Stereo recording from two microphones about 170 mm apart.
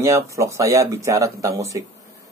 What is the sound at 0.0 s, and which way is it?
Speech, 15° right (ahead or behind).